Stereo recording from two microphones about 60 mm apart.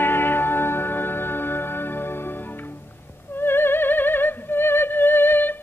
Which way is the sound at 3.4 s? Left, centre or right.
Left.